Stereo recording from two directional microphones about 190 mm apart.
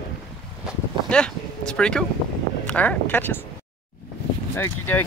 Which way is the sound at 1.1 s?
5° left (ahead or behind).